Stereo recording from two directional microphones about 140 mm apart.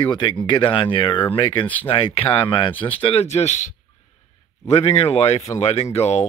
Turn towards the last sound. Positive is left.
turn(degrees=50)  # may be behind; listen again after turning